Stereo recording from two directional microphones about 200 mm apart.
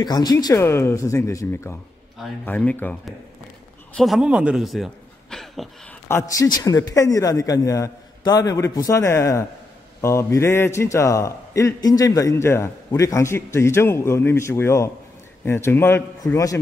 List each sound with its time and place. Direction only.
0.0 s a man's voice: 20° left (ahead or behind); by 5.9 s centre (ahead or behind)
6.0 s a man's voice: 15° left (ahead or behind)